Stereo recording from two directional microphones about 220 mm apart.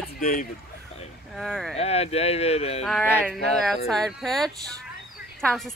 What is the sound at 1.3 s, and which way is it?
Speech, centre (ahead or behind).